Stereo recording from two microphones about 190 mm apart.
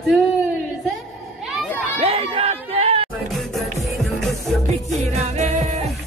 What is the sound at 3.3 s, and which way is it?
Music, centre (ahead or behind).